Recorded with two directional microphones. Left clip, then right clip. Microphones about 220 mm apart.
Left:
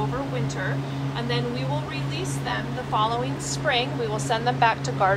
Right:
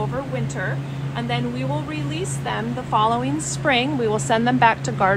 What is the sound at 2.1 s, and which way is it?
A woman's voice, 25° right (ahead or behind).